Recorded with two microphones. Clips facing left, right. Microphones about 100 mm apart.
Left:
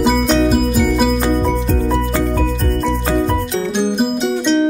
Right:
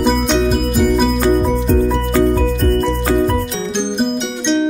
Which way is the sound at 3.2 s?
Centre (ahead or behind).